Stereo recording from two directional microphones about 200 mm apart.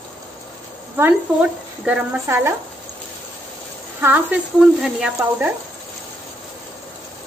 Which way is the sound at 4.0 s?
10° right (ahead or behind).